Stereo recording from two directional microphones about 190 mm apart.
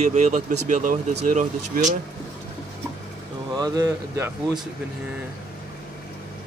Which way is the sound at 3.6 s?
20° right (ahead or behind).